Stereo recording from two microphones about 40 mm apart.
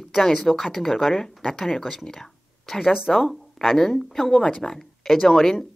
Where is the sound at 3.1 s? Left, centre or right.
Centre.